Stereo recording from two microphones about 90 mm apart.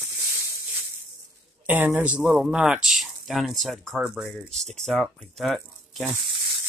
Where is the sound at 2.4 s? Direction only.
10° right (ahead or behind).